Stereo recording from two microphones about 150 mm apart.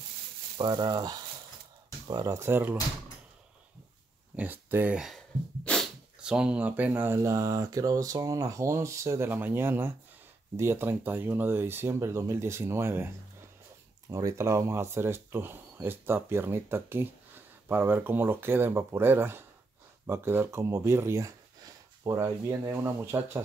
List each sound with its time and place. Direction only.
0.6 s speech: 30° right (ahead or behind)
4.4 s speech: 15° right (ahead or behind)
5.6 s dog: 5° left (ahead or behind)
6.1 s speech: 5° right (ahead or behind)